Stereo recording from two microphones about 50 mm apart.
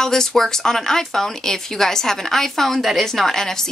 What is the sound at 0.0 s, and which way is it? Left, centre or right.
Speech, centre.